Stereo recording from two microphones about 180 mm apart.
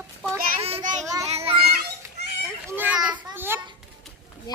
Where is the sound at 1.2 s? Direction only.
35° right (ahead or behind).